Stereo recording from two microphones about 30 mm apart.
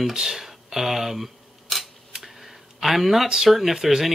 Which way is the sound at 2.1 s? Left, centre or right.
Centre.